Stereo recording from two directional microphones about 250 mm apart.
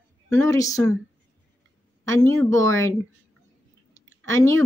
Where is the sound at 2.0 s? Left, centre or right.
Centre.